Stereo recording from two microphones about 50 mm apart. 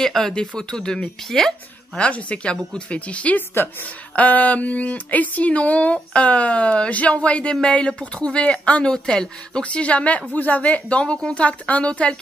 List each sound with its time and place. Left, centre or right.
0.0 s speech: centre
2.0 s a woman's voice: left
3.3 s a woman's voice: left